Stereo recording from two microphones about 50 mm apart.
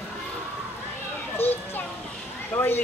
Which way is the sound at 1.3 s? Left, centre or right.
Left.